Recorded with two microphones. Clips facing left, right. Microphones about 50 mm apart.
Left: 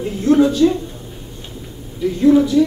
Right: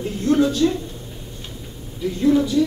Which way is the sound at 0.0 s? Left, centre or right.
Centre.